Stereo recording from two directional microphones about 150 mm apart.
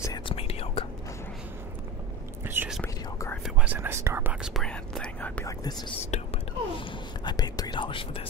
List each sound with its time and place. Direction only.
0.3 s whispering: 40° left (ahead or behind)
2.4 s whispering: 15° right (ahead or behind); by 5.3 s 5° left (ahead or behind)
5.4 s whispering: 25° left (ahead or behind)
6.1 s whispering: 40° left (ahead or behind)